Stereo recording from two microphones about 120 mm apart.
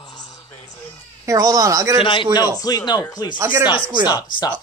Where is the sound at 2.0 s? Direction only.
45° left (ahead or behind).